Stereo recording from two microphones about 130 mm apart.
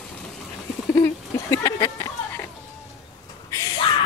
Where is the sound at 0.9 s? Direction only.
25° left (ahead or behind).